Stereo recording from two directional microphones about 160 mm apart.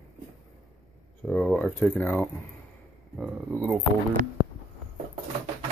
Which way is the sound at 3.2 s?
5° right (ahead or behind).